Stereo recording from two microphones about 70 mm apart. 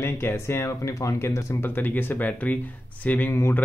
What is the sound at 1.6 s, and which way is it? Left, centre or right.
Speech, left.